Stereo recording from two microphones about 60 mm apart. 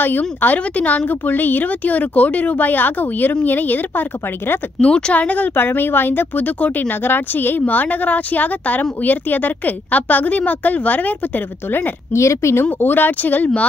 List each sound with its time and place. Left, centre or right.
0.2 s a woman's voice: left
4.8 s a woman's voice: centre
5.6 s a woman's voice: left
12.1 s speech: left
12.8 s a woman's voice: left